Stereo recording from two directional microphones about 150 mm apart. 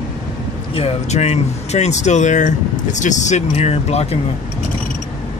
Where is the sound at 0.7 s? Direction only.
45° left (ahead or behind).